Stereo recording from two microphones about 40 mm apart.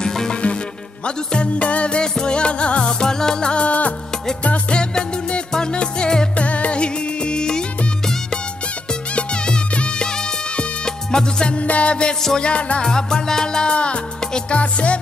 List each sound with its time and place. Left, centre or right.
0.0 s music: centre
0.3 s music: left
3.6 s music: left
6.3 s music: left
9.1 s music: left
11.5 s music: left
12.8 s music: centre